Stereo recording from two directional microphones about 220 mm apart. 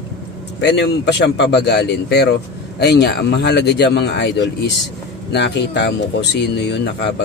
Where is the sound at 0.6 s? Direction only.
50° left (ahead or behind).